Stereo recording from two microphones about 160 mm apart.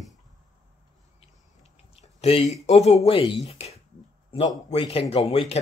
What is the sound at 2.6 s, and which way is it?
Speech, 40° left (ahead or behind).